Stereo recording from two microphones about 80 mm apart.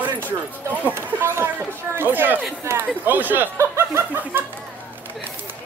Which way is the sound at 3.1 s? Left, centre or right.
Right.